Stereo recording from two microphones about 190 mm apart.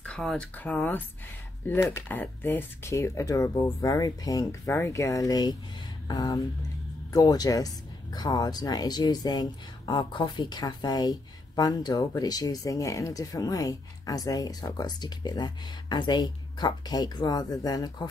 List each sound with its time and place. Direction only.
0.0 s speech: 5° left (ahead or behind); by 18.0 s 20° left (ahead or behind)